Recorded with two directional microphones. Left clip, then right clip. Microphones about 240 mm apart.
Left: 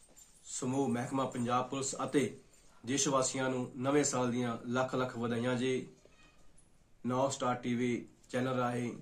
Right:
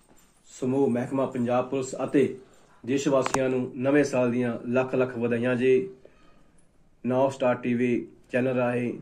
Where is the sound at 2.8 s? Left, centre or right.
Left.